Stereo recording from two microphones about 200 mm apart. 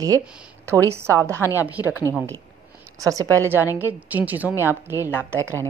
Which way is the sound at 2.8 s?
15° right (ahead or behind).